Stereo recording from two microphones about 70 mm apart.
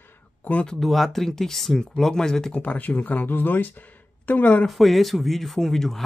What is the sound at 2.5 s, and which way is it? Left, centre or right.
Speech, left.